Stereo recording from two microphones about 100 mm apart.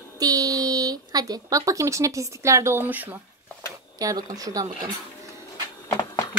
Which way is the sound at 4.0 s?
40° right (ahead or behind).